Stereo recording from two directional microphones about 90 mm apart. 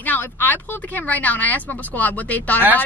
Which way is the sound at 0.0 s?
20° left (ahead or behind).